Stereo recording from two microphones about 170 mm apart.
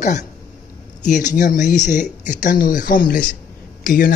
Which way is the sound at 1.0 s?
45° left (ahead or behind).